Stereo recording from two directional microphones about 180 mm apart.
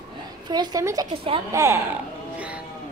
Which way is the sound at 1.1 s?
30° right (ahead or behind).